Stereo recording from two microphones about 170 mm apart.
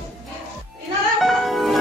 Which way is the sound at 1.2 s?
Centre (ahead or behind).